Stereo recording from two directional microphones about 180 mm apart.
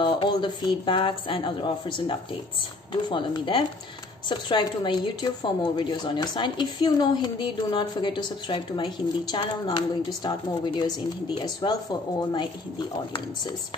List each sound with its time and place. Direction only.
0.0 s a woman's voice: 25° left (ahead or behind)